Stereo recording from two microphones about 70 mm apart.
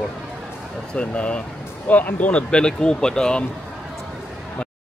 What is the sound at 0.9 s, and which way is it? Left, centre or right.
Speech, centre.